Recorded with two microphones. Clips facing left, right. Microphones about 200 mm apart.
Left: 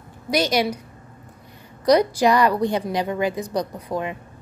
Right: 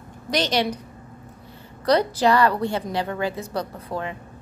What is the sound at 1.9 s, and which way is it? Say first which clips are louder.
A woman's voice: left 2 dB; 15° left (ahead or behind).